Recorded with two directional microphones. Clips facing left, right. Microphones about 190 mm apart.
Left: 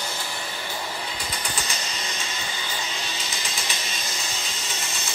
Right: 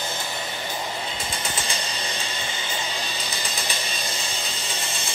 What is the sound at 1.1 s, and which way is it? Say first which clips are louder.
Music: right 2 dB; 25° right (ahead or behind).